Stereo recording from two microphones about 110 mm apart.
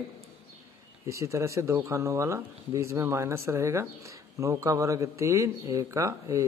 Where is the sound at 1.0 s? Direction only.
25° right (ahead or behind).